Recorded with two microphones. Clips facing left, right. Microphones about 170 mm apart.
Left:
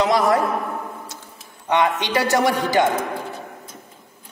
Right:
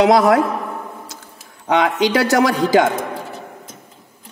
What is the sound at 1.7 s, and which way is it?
Speech, 90° right.